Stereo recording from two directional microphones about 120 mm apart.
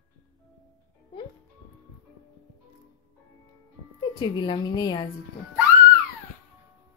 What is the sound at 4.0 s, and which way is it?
A woman's voice, 40° left (ahead or behind).